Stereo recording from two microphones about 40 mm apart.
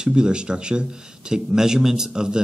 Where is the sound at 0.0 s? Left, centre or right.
Right.